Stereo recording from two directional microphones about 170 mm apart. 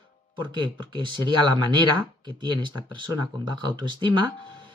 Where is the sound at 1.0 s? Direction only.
25° right (ahead or behind).